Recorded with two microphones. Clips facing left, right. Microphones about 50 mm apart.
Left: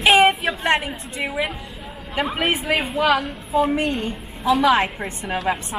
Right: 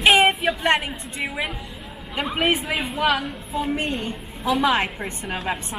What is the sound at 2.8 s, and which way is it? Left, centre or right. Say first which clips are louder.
Speech: left 1 dB; centre.